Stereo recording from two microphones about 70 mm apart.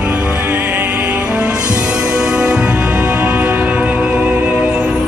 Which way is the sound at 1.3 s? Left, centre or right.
Centre.